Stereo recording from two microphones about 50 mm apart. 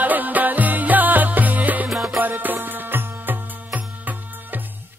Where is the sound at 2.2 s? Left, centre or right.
Right.